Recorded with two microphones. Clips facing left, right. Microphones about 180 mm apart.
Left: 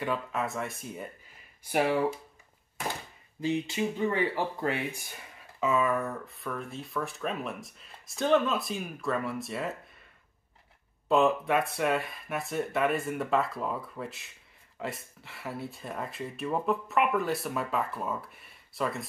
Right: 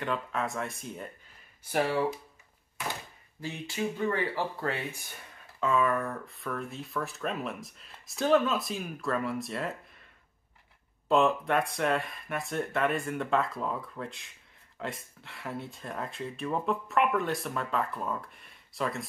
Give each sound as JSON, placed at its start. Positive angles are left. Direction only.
{"t": 0.0, "sound": "speech", "side_deg": 5}
{"t": 3.3, "sound": "speech", "side_deg": 20}
{"t": 5.6, "sound": "speech", "side_deg": 5}
{"t": 11.1, "sound": "speech", "side_deg": 0}